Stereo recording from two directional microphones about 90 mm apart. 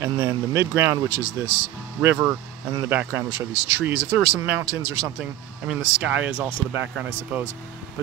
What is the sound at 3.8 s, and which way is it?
Speech, 20° right (ahead or behind).